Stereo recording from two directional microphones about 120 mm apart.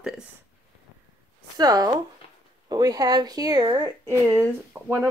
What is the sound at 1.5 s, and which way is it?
Speech, 35° right (ahead or behind).